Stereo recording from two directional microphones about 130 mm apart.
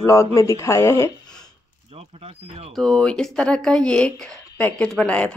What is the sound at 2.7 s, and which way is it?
Speech, centre (ahead or behind).